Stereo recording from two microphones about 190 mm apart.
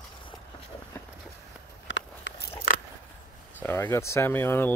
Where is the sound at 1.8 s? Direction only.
80° left.